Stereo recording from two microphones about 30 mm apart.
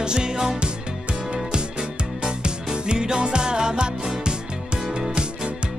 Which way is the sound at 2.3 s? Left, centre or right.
Right.